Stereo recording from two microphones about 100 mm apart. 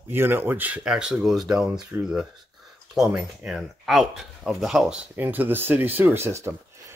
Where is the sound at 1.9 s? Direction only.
15° right (ahead or behind).